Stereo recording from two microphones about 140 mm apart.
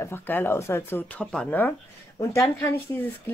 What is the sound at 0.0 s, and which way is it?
Speech, 15° left (ahead or behind).